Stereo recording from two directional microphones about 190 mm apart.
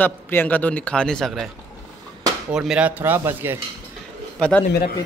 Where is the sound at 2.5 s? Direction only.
5° right (ahead or behind).